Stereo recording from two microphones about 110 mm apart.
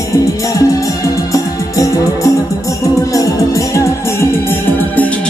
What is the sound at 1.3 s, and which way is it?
Music, 30° left (ahead or behind).